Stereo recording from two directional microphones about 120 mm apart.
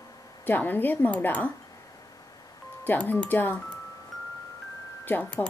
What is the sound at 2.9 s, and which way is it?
Speech, 15° left (ahead or behind).